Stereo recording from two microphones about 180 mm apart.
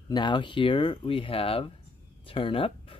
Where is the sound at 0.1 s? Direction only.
25° left (ahead or behind).